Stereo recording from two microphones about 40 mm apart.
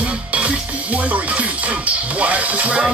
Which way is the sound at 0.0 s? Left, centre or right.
Right.